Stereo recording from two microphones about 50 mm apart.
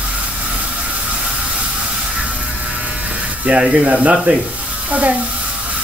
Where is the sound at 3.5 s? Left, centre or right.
Right.